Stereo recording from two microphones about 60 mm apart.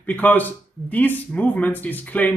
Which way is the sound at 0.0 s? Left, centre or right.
Left.